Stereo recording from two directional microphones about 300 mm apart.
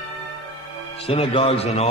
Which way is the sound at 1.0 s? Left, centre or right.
Centre.